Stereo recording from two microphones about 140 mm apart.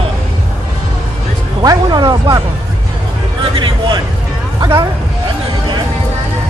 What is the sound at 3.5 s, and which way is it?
Speech, 35° right (ahead or behind).